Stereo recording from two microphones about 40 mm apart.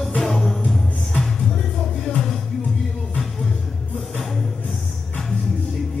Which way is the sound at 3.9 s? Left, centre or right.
Centre.